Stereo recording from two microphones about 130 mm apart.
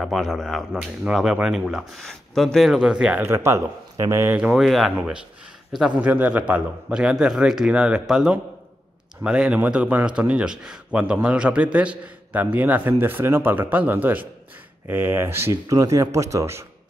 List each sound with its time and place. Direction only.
0.0 s speech: centre (ahead or behind)
3.2 s speech: 20° right (ahead or behind)
4.4 s a man's voice: centre (ahead or behind); by 16.6 s 20° right (ahead or behind)